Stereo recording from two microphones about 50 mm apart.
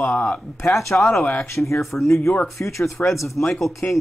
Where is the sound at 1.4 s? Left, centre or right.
Left.